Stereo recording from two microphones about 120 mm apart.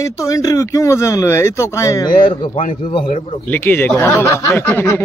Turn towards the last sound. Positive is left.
turn(degrees=20)  # may be behind; listen again after turning